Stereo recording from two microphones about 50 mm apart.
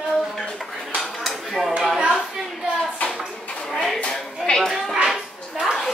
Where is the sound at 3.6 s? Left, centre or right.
Centre.